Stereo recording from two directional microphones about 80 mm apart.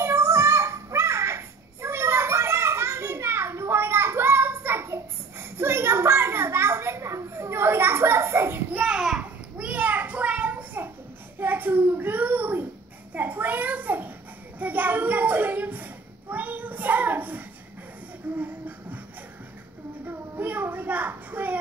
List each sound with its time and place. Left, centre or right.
0.0 s child singing: right
8.7 s a sound: centre
18.3 s music: centre
20.1 s child singing: right